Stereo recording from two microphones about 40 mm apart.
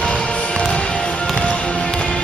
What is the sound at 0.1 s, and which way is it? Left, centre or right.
Music, left.